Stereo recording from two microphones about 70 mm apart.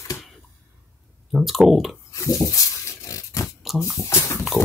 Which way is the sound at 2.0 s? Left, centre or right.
Left.